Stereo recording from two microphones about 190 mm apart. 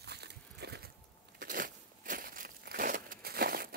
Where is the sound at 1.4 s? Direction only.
50° right (ahead or behind).